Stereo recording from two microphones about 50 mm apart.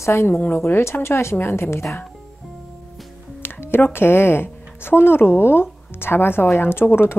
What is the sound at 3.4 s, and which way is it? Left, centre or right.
A woman's voice, left.